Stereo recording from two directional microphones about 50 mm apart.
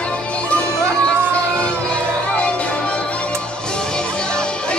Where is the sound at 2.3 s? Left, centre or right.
Left.